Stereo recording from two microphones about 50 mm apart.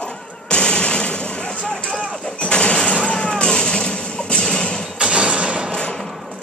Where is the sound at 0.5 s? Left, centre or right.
Centre.